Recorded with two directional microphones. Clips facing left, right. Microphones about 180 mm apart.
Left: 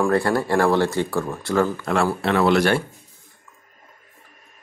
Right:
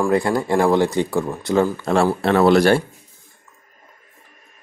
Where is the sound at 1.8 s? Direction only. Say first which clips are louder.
Right 4 dB; 30° right (ahead or behind).